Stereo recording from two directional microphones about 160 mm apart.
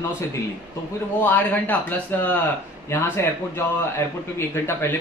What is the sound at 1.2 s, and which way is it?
Speech, 10° left (ahead or behind).